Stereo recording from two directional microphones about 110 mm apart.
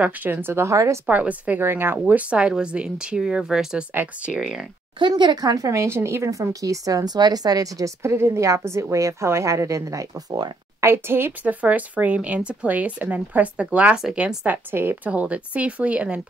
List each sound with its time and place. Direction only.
0.0 s speech: 15° right (ahead or behind)
1.0 s speech: 15° right (ahead or behind)
4.3 s speech: 5° right (ahead or behind)
4.9 s speech: 45° right (ahead or behind)
10.8 s speech: 20° right (ahead or behind)